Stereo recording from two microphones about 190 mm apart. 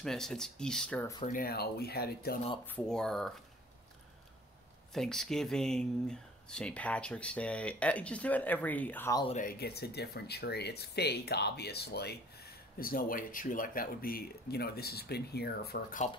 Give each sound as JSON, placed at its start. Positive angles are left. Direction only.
{"t": 0.0, "sound": "speech", "side_deg": 0}
{"t": 1.2, "sound": "speech", "side_deg": 50}
{"t": 2.6, "sound": "speech", "side_deg": 5}
{"t": 4.9, "sound": "speech", "side_deg": 0}
{"t": 9.3, "sound": "speech", "side_deg": 45}